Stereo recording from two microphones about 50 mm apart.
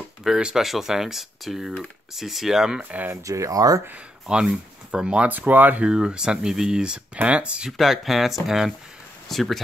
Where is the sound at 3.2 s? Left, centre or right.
Right.